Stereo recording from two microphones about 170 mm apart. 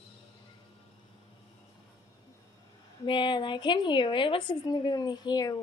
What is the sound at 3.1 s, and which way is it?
A woman's voice, 30° left (ahead or behind).